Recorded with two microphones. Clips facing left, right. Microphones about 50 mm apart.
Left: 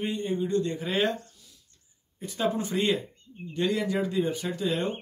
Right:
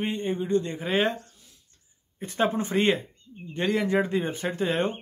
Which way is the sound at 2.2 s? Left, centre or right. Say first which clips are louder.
Right 3 dB; right.